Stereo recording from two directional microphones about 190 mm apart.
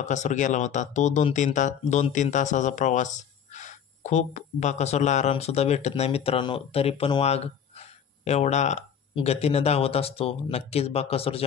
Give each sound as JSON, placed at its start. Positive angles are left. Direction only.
{"t": 0.0, "sound": "speech", "side_deg": 40}